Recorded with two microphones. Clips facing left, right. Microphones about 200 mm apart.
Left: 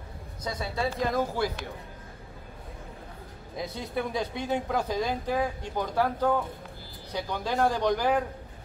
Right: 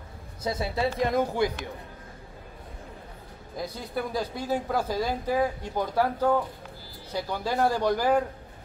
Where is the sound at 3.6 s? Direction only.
Centre (ahead or behind).